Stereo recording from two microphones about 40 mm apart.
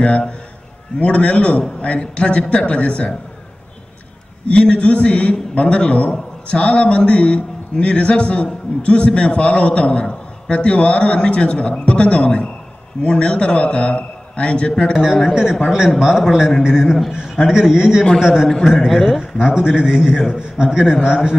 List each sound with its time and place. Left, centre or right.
0.9 s a man's voice: left
4.6 s a man's voice: left
15.2 s a man's voice: centre
19.3 s a man's voice: centre